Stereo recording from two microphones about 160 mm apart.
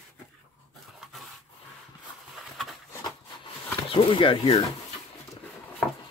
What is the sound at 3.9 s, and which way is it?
Speech, 35° left (ahead or behind).